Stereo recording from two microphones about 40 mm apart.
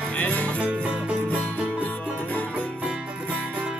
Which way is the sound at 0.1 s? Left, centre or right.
Left.